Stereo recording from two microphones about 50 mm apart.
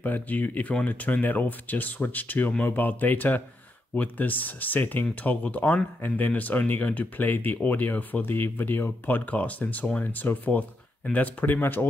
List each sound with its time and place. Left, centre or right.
0.0 s speech: left